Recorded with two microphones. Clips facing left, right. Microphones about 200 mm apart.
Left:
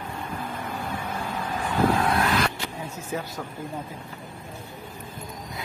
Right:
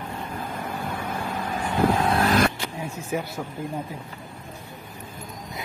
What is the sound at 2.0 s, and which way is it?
Vehicle, 30° right (ahead or behind).